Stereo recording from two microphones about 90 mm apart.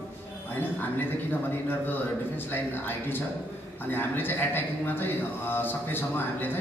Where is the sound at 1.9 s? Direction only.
20° left (ahead or behind).